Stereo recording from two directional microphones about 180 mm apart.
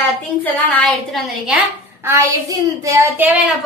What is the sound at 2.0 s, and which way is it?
Child singing, 15° right (ahead or behind).